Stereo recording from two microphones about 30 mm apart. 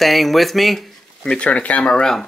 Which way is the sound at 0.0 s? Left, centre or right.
Centre.